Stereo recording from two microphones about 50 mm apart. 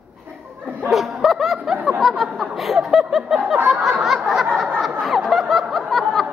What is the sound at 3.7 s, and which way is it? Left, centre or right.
Snicker, centre.